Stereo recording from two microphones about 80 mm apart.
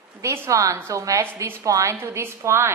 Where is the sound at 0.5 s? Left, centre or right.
Right.